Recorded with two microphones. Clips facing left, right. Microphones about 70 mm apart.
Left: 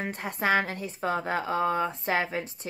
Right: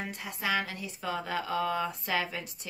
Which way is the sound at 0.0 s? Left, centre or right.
Left.